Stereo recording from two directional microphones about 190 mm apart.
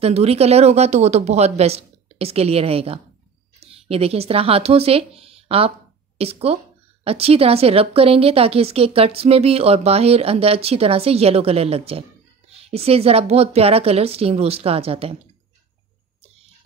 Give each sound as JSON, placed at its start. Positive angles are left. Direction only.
{"t": 0.0, "sound": "speech", "side_deg": -35}